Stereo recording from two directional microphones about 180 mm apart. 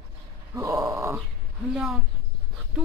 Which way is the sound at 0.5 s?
15° right (ahead or behind).